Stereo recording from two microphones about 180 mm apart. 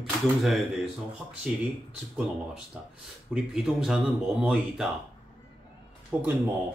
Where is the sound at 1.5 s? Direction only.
5° right (ahead or behind).